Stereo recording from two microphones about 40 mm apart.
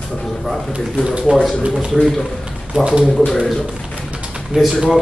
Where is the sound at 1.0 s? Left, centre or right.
Right.